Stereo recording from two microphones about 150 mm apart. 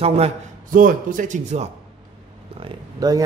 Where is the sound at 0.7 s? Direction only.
65° right (ahead or behind).